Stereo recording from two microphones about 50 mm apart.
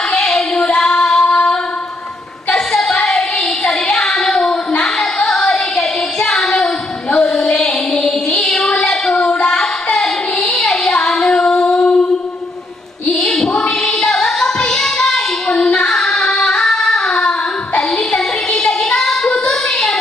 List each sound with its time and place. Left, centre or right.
0.1 s child singing: centre
1.2 s female singing: left
2.5 s a sound: centre
3.1 s child singing: centre
9.9 s child singing: centre
13.2 s music: centre
16.3 s singing: centre
17.9 s child singing: centre